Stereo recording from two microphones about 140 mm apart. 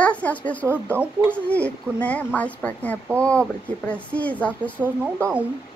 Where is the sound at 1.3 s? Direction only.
10° left (ahead or behind).